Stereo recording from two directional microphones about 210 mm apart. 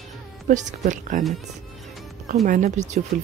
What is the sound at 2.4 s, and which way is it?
Speech, 35° right (ahead or behind).